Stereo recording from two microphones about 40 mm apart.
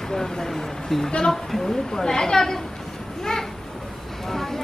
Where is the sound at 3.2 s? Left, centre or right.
Centre.